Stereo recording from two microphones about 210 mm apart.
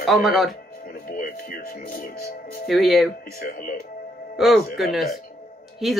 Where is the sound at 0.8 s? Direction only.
40° left (ahead or behind).